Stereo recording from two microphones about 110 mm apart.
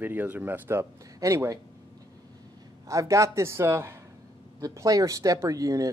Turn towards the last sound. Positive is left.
turn(degrees=-30)  # may be behind; listen again after turning